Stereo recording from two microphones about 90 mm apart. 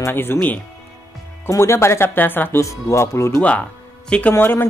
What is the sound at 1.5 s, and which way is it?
Speech, 30° left (ahead or behind).